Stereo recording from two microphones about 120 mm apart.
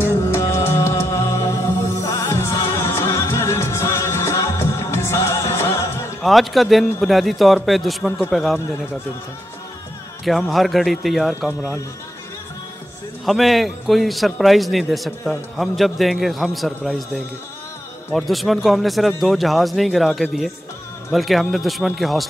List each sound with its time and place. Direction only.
0.0 s music: 20° left (ahead or behind)
6.2 s a man's voice: centre (ahead or behind)
10.5 s a man's voice: centre (ahead or behind)
13.2 s a man's voice: centre (ahead or behind)